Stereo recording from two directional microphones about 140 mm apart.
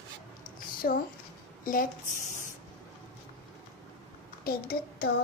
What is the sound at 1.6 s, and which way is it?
Speech, 75° left (ahead or behind).